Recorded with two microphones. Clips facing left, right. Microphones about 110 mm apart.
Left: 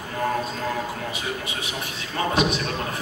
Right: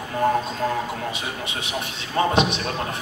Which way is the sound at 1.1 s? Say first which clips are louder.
Even; 20° right (ahead or behind).